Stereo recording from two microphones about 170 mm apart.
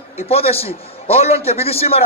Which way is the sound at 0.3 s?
35° left (ahead or behind).